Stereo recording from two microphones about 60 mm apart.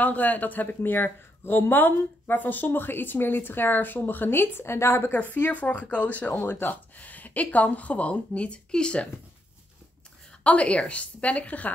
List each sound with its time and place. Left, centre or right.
0.0 s a man's voice: left
5.1 s speech: left
6.4 s speech: left; by 9.1 s centre
10.4 s speech: left